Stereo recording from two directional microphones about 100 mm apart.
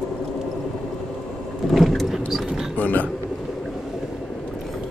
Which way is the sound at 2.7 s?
15° left (ahead or behind).